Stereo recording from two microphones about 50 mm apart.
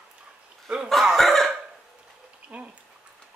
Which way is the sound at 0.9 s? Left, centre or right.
Centre.